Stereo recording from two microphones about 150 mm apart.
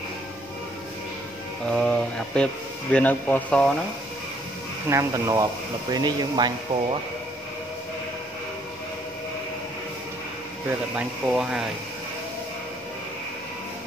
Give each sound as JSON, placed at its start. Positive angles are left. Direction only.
{"t": 1.7, "sound": "speech", "side_deg": 5}
{"t": 4.8, "sound": "speech", "side_deg": -20}
{"t": 10.7, "sound": "speech", "side_deg": -10}